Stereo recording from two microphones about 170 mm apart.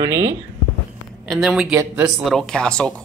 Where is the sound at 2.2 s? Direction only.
Centre (ahead or behind).